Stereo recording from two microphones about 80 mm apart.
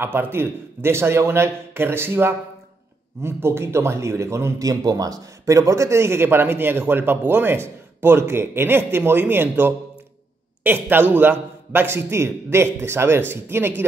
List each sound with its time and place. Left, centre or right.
0.0 s a man's voice: right
4.6 s a man's voice: right